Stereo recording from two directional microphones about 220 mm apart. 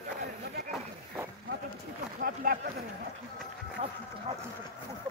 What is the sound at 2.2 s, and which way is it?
Speech, 40° right (ahead or behind).